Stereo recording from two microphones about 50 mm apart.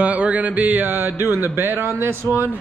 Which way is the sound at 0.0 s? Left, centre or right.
Right.